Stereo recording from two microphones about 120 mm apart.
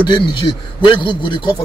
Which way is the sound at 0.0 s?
45° left (ahead or behind).